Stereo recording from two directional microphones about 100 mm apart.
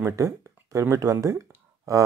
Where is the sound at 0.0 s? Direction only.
35° right (ahead or behind).